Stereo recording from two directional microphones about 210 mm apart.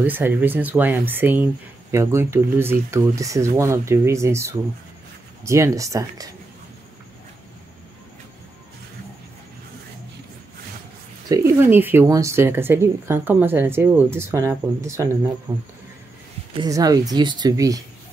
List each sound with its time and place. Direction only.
0.0 s speech: 10° right (ahead or behind)
11.2 s speech: 15° right (ahead or behind)